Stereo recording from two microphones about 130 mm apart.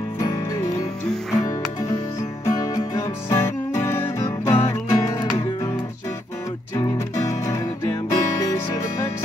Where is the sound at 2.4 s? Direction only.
25° left (ahead or behind).